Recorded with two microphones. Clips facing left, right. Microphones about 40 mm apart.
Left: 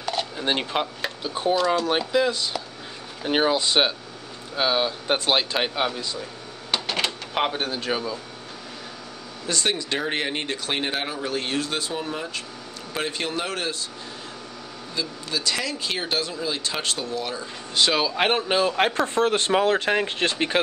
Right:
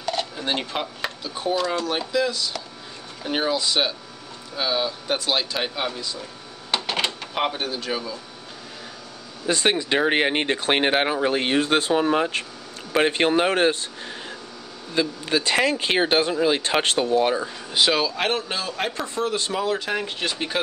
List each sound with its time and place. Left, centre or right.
0.0 s a sound: centre
0.5 s speech: centre
1.5 s speech: centre
1.9 s speech: left
6.7 s printer: centre
7.3 s speech: centre
9.5 s speech: right
15.0 s speech: right
17.8 s speech: centre
18.1 s speech: left
19.1 s speech: left